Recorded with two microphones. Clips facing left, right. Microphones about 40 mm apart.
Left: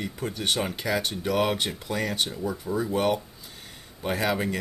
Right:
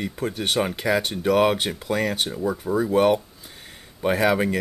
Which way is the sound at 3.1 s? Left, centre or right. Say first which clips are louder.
Right 5 dB; centre.